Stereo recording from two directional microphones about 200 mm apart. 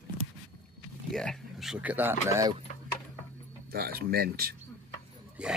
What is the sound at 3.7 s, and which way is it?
Speech, 50° right (ahead or behind).